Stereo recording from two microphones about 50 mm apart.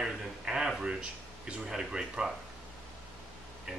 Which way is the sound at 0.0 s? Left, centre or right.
Centre.